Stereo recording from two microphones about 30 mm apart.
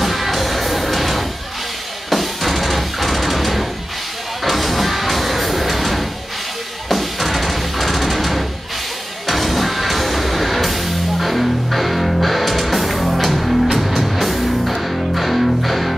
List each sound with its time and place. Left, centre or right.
0.0 s music: centre